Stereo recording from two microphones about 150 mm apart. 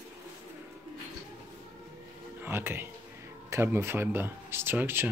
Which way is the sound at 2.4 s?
15° right (ahead or behind).